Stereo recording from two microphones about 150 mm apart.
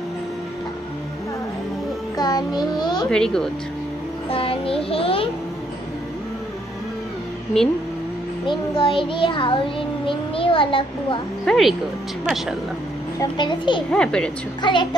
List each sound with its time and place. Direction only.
2.1 s a child's voice: 25° left (ahead or behind)
3.1 s speech: 5° left (ahead or behind)
4.3 s music: 40° left (ahead or behind)
7.5 s speech: 5° left (ahead or behind)
8.5 s a child's voice: 35° left (ahead or behind)
11.4 s speech: centre (ahead or behind)
13.2 s a child's voice: 30° left (ahead or behind)
13.9 s speech: 5° left (ahead or behind)
14.6 s a child's voice: 30° left (ahead or behind)